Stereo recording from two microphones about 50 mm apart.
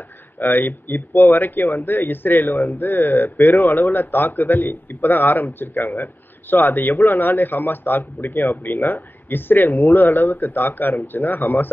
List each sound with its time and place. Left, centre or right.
0.4 s speech: left